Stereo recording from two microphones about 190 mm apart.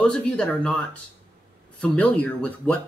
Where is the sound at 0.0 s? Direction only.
5° left (ahead or behind).